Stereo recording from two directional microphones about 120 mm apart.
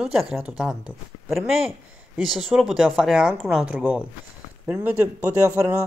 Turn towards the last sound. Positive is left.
turn(degrees=-25)  # may be behind; listen again after turning